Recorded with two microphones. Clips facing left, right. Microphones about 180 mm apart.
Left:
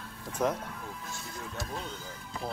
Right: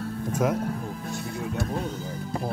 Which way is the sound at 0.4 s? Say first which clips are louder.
Right 4 dB; 10° right (ahead or behind).